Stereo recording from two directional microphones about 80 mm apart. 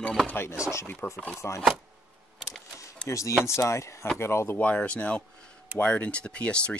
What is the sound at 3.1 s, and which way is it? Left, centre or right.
Speech, left.